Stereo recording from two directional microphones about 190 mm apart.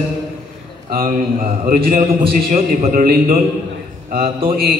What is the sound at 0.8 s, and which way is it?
Speech, 50° right (ahead or behind).